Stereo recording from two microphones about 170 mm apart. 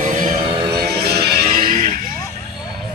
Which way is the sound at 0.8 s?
70° right (ahead or behind).